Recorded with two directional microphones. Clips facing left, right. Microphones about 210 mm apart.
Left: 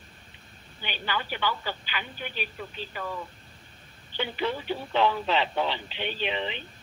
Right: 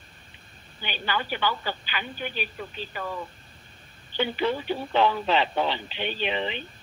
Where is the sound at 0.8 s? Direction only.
45° right (ahead or behind).